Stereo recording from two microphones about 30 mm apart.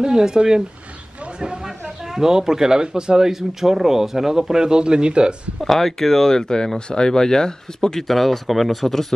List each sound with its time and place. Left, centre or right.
0.0 s speech: centre
1.4 s a sound: right
2.0 s speech: centre
3.3 s speech: centre; by 5.3 s right
5.6 s speech: centre
6.4 s speech: left
8.1 s speech: centre